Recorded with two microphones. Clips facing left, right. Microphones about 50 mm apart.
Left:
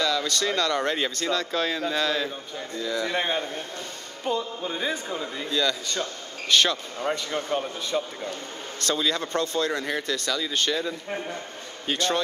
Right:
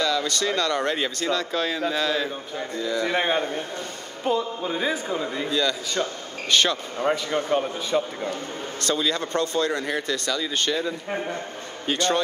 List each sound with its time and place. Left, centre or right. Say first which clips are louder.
0.0 s speech: right 1 dB; centre